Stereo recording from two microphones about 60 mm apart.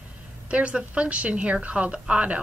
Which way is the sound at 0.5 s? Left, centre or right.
Centre.